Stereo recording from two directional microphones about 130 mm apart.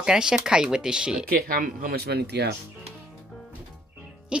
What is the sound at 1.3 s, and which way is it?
Speech, 90° right.